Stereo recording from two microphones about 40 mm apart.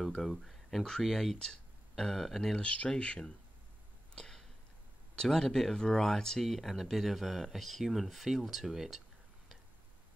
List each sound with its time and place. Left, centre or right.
0.0 s a sound: centre
1.0 s speech: centre
3.0 s speech: left
4.1 s a sound: centre
5.1 s speech: centre
6.4 s speech: centre